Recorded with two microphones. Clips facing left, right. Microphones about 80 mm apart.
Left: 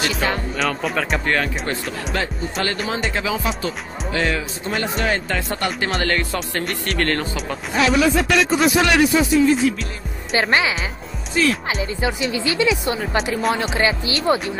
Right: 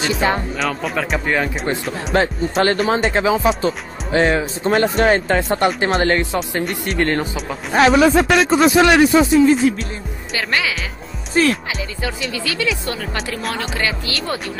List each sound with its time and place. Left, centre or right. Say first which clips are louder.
0.0 s speech: right 3 dB; right
0.6 s speech: right 1 dB; centre
2.1 s speech: right 9 dB; right
4.6 s speech: right 7 dB; right; by 7.2 s centre
7.7 s speech: right 5 dB; right
10.3 s speech: left 3 dB; left
11.4 s speech: right 3 dB; right
11.8 s speech: left 3 dB; left